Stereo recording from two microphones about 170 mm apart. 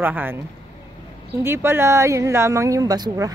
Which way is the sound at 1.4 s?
15° right (ahead or behind).